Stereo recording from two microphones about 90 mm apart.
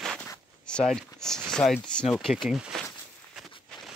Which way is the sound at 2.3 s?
5° right (ahead or behind).